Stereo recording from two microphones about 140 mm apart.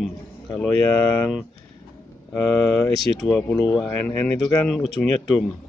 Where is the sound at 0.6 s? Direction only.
15° left (ahead or behind).